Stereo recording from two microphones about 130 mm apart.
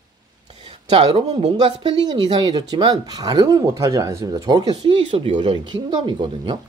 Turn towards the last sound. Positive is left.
turn(degrees=-40)  # may be behind; listen again after turning